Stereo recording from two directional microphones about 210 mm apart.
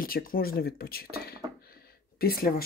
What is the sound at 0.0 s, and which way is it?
Speech, 45° left (ahead or behind).